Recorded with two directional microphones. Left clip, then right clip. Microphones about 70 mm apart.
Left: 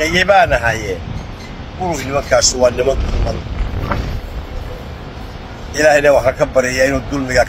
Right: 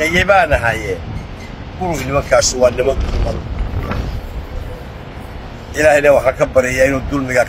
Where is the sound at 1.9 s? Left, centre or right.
Right.